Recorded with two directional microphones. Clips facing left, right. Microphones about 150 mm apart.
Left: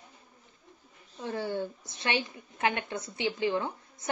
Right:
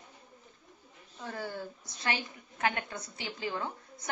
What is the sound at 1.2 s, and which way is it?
Speech, 25° left (ahead or behind).